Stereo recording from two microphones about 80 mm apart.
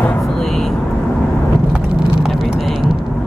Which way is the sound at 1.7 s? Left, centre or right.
Centre.